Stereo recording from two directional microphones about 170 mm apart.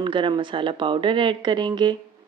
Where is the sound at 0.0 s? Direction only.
30° right (ahead or behind).